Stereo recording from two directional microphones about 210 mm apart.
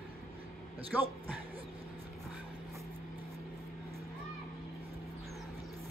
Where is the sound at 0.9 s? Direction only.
10° right (ahead or behind).